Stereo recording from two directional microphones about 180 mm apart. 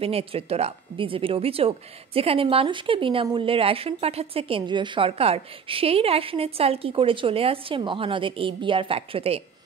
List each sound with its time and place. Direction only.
0.0 s speech: 30° right (ahead or behind)